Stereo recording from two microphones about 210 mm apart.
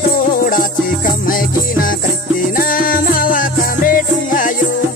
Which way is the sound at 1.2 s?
40° left (ahead or behind).